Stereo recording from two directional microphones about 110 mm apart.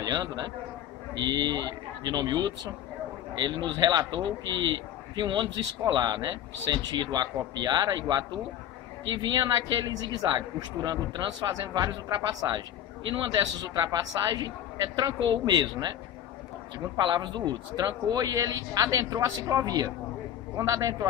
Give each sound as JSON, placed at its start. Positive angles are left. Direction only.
{"t": 0.0, "sound": "a man's voice", "side_deg": -35}
{"t": 16.9, "sound": "speech", "side_deg": -40}